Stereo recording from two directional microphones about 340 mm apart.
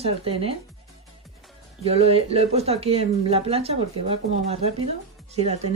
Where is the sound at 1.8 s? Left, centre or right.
Centre.